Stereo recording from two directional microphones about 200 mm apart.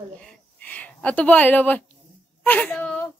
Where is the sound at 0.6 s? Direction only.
10° left (ahead or behind).